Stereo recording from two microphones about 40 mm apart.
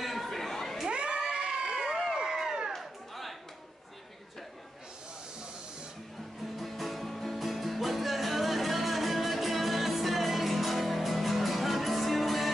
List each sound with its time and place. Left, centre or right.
0.0 s chatter: centre
0.8 s children shouting: right
1.3 s crowd: right
2.1 s crowd: centre
2.7 s a sound: centre
6.5 s music: centre